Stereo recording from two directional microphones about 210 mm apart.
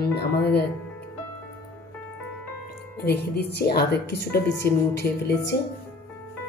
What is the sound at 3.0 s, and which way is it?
Speech, 50° left (ahead or behind).